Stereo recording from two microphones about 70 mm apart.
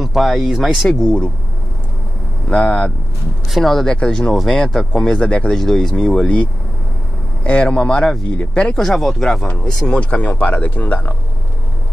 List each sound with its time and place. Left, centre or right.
0.0 s speech: centre
0.9 s speech: centre
2.5 s speech: centre
3.4 s speech: centre
7.4 s speech: centre
8.8 s speech: centre; by 11.1 s left